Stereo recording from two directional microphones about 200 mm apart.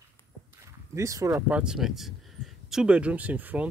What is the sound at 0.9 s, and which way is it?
Speech, 15° right (ahead or behind).